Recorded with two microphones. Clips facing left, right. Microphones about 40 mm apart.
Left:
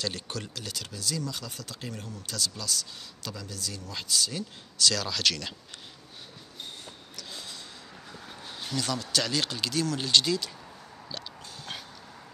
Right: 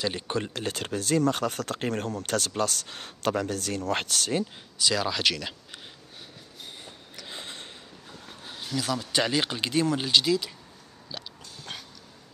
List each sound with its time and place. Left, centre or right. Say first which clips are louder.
0.0 s speech: right 5 dB; right
0.5 s speech: right 8 dB; right
4.7 s speech: right 2 dB; centre
7.2 s a sound: right 3 dB; right
8.7 s speech: right 3 dB; centre
10.0 s speech: right 2 dB; centre
11.1 s a sound: even; centre